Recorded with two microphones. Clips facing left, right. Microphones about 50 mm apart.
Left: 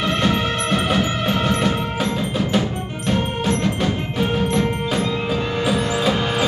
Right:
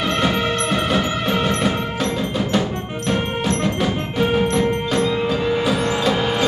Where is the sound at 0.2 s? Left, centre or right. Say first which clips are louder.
Right 1 dB; centre.